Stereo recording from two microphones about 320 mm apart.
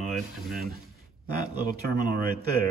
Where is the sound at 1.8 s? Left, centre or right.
Right.